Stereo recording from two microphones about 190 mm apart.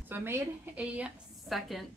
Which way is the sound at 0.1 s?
10° right (ahead or behind).